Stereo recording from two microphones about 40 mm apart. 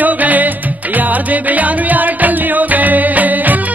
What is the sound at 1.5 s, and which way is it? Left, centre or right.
Music, right.